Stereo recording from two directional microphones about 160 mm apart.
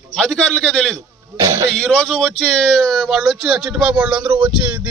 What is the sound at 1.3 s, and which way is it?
Speech, 15° right (ahead or behind).